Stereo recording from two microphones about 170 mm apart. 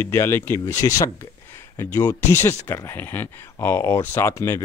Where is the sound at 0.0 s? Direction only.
15° left (ahead or behind).